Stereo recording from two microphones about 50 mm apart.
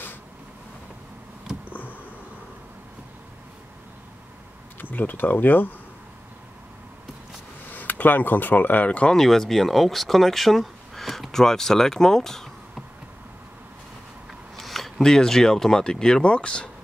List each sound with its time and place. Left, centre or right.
1.7 s a sound: left
4.7 s speech: left
7.7 s speech: left
9.1 s speech: centre
14.6 s speech: centre